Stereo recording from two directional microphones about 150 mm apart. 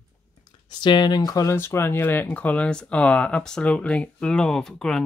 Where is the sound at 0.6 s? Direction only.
30° left (ahead or behind).